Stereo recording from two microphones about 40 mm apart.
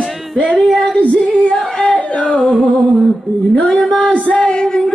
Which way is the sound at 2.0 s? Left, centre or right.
Left.